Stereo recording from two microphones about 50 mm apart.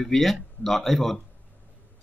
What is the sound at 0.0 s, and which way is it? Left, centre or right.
Speech, centre.